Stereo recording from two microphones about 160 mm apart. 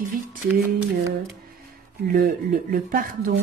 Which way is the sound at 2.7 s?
60° right (ahead or behind).